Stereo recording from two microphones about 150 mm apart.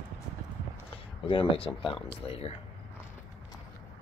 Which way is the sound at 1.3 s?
35° left (ahead or behind).